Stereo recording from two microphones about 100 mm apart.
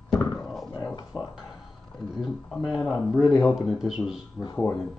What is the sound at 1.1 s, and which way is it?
Speech, 10° right (ahead or behind).